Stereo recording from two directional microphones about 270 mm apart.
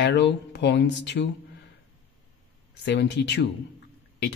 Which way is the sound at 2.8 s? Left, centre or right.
Left.